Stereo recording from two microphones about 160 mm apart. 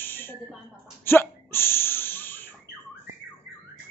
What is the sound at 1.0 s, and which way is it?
Hiccup, 15° left (ahead or behind).